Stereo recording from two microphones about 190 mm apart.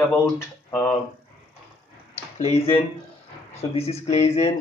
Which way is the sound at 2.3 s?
35° left (ahead or behind).